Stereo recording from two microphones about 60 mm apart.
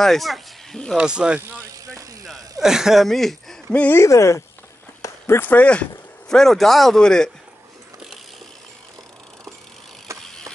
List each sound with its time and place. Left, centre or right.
0.0 s speech: centre
0.9 s speech: centre
1.9 s a sound: right
2.6 s speech: centre
3.9 s speech: left
5.2 s speech: left
5.5 s speech: left
6.2 s a man's voice: centre
10.2 s mechanisms: centre